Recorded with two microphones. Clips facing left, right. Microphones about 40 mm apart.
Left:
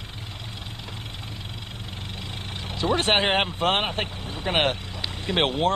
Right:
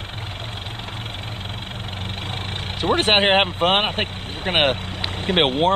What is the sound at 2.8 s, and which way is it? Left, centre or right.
Speech, right.